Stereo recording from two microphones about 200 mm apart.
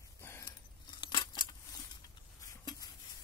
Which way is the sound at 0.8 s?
25° left (ahead or behind).